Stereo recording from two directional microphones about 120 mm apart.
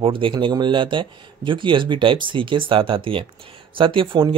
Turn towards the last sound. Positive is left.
turn(degrees=-45)  # may be behind; listen again after turning